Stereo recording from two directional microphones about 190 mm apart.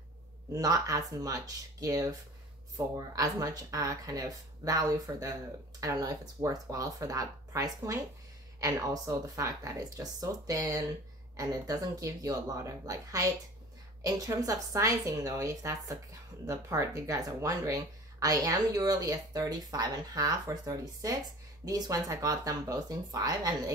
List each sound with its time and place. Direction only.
0.5 s speech: 20° right (ahead or behind)
3.2 s a woman's voice: 20° right (ahead or behind)